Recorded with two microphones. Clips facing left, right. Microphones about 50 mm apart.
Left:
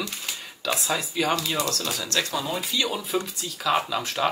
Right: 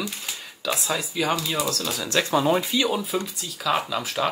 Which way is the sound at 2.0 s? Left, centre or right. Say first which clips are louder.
Right 9 dB; centre.